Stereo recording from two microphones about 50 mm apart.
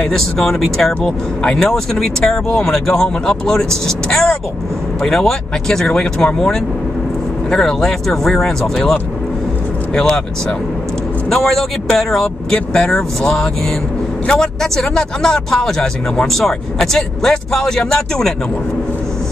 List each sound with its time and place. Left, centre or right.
0.1 s speech: centre
1.0 s speech: centre
9.9 s speech: centre